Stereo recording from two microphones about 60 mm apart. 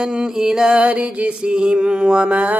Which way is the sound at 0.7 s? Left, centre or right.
Right.